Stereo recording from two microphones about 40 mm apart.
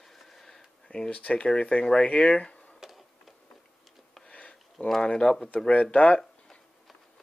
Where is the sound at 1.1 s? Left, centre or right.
Left.